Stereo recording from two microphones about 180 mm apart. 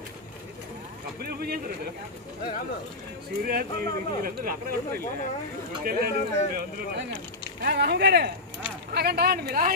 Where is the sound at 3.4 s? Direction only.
55° right (ahead or behind).